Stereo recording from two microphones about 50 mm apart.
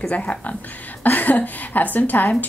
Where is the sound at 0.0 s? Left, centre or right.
Left.